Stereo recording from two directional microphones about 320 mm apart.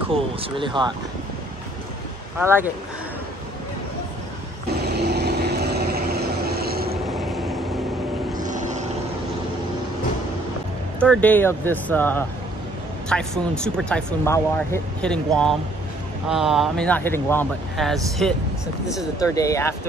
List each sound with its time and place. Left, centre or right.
0.1 s speech: centre
2.3 s speech: centre
4.7 s vehicle: right
7.1 s vehicle: centre
8.5 s vehicle: right
11.0 s speech: centre